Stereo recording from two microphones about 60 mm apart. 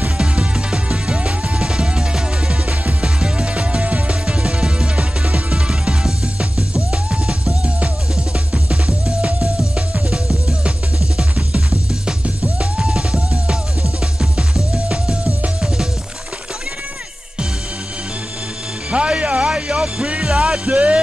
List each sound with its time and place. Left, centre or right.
0.2 s music: centre
18.9 s music: centre